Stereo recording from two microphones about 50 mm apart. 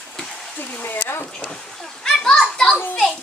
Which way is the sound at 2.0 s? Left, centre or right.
Centre.